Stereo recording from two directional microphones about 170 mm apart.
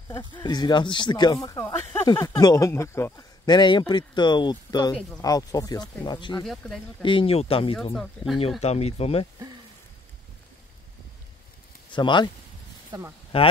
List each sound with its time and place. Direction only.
0.1 s speech: 15° left (ahead or behind)
0.4 s speech: 25° left (ahead or behind)
3.4 s speech: 25° left (ahead or behind)
6.4 s speech: centre (ahead or behind)
7.0 s speech: 30° left (ahead or behind)
7.9 s speech: centre (ahead or behind)
8.5 s speech: 40° left (ahead or behind)
11.9 s speech: 25° left (ahead or behind)
12.9 s speech: 25° right (ahead or behind)
13.3 s speech: 35° left (ahead or behind)